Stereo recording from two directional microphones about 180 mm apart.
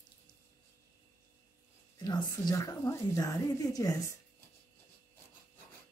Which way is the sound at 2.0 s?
20° left (ahead or behind).